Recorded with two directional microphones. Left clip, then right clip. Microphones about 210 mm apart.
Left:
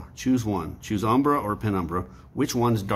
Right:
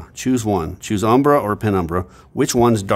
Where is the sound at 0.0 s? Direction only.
55° right (ahead or behind).